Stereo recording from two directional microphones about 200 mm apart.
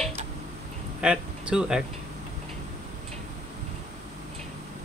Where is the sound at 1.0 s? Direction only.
5° right (ahead or behind).